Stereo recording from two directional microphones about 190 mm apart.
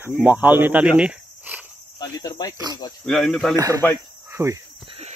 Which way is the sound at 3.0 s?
Centre (ahead or behind).